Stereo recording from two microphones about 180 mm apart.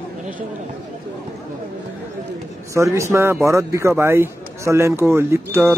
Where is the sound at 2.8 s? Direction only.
15° right (ahead or behind).